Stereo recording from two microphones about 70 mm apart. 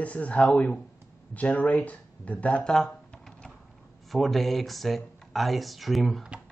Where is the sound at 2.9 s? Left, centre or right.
Centre.